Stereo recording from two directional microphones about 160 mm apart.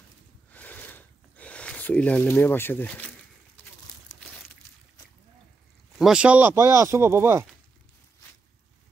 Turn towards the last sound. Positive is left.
turn(degrees=-15)  # may be behind; listen again after turning